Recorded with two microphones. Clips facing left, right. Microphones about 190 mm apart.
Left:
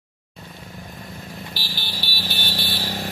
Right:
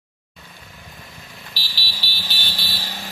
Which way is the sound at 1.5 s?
50° left (ahead or behind).